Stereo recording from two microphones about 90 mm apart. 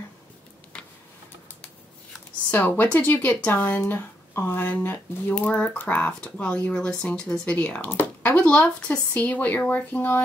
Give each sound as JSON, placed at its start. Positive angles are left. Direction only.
{"t": 2.5, "sound": "speech", "side_deg": 15}